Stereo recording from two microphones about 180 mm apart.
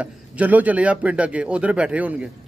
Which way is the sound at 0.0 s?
10° right (ahead or behind).